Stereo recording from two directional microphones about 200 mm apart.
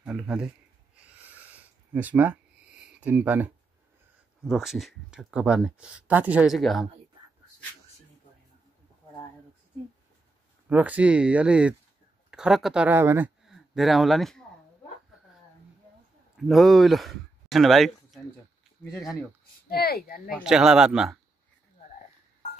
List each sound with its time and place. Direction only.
0.0 s speech: 5° right (ahead or behind)
0.9 s a sound: 5° right (ahead or behind)
2.8 s speech: 5° right (ahead or behind)
10.7 s speech: 10° right (ahead or behind)
13.4 s speech: centre (ahead or behind)
16.3 s speech: centre (ahead or behind)
19.7 s speech: 50° left (ahead or behind)
20.4 s speech: 5° right (ahead or behind)